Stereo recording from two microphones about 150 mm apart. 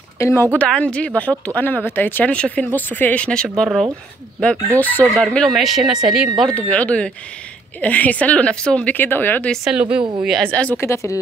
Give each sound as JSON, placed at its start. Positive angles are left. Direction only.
{"t": 0.2, "sound": "speech", "side_deg": 15}
{"t": 6.5, "sound": "speech", "side_deg": 10}
{"t": 9.7, "sound": "a woman's voice", "side_deg": -5}